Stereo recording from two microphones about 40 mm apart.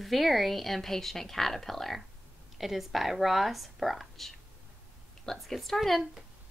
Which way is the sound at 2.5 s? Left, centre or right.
Centre.